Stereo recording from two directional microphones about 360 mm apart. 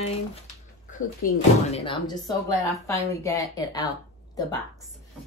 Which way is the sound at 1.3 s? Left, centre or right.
Centre.